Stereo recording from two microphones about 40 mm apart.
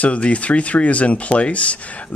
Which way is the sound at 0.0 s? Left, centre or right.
Left.